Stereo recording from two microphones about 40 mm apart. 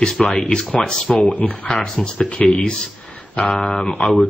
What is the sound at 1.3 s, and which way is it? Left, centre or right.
Speech, left.